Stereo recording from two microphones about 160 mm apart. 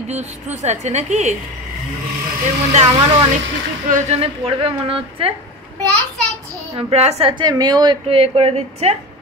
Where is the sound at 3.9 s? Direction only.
40° right (ahead or behind).